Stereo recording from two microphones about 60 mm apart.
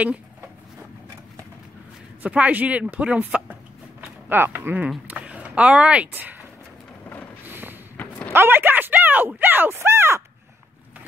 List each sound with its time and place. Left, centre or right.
2.2 s speech: right
4.3 s speech: right
5.0 s speech: right
7.4 s a sound: right
9.4 s speech: right